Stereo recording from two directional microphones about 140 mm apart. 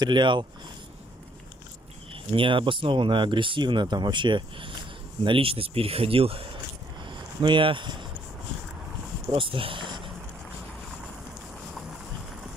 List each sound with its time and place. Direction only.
0.0 s speech: 35° right (ahead or behind)
2.3 s speech: 40° right (ahead or behind)
7.1 s a sound: 35° right (ahead or behind)
9.3 s speech: 40° right (ahead or behind)